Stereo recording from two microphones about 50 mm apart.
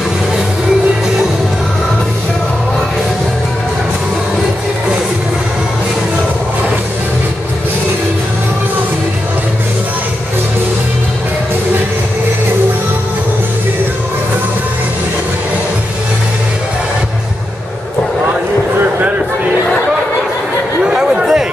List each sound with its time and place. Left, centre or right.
20.8 s chatter: centre